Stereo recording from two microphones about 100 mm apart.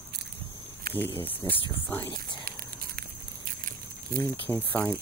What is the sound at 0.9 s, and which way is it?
Speech, 20° left (ahead or behind).